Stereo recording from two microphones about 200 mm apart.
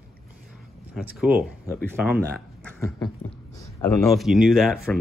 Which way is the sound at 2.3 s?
5° left (ahead or behind).